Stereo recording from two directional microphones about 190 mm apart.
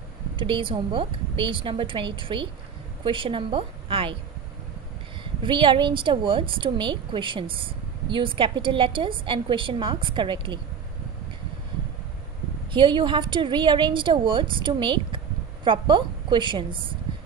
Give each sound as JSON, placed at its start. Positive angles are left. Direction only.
{"t": 0.4, "sound": "a woman's voice", "side_deg": -25}
{"t": 5.2, "sound": "a woman's voice", "side_deg": -25}
{"t": 12.7, "sound": "a woman's voice", "side_deg": -25}